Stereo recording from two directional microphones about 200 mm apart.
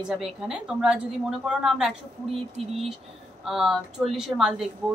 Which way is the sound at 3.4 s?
Centre (ahead or behind).